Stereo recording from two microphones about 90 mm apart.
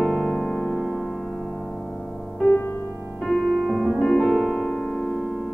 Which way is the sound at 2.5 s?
25° left (ahead or behind).